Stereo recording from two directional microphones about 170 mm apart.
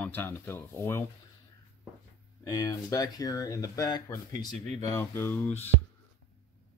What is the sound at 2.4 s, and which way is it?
Speech, 20° left (ahead or behind).